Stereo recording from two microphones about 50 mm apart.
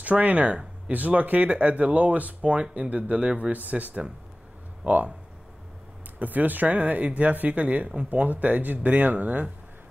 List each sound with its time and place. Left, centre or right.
0.0 s speech: right
3.5 s speech: right
6.1 s speech: right